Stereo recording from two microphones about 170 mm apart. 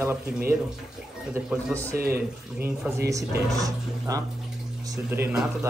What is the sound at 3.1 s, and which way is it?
A man's voice, 20° right (ahead or behind).